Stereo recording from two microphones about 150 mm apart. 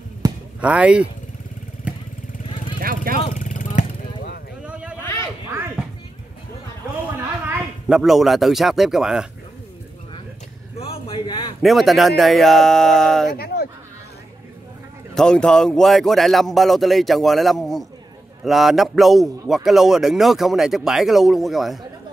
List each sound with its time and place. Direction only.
0.2 s basketball bounce: 25° right (ahead or behind)
0.6 s speech: 10° right (ahead or behind)
1.9 s vehicle: 10° right (ahead or behind)
2.8 s vehicle: 75° right (ahead or behind)
3.3 s vehicle: 60° left (ahead or behind)
4.6 s vehicle: 10° right (ahead or behind)
7.4 s speech: 10° right (ahead or behind)
10.8 s a sound: 40° left (ahead or behind)
11.6 s a man's voice: centre (ahead or behind)
15.1 s a man's voice: 5° left (ahead or behind)